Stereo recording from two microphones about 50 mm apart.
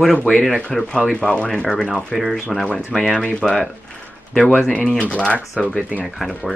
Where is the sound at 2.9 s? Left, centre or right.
Centre.